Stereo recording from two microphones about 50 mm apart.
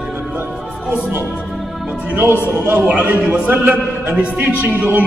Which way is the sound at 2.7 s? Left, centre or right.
Right.